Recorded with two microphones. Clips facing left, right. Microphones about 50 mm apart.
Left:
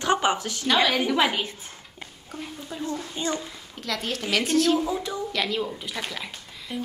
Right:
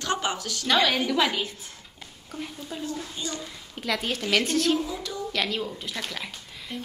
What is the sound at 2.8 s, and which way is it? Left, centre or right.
Speech, left.